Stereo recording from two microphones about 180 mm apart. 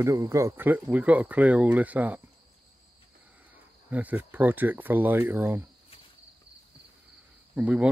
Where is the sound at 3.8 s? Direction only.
10° right (ahead or behind).